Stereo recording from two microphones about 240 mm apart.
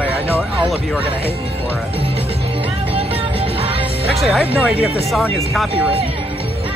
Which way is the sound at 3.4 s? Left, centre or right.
Right.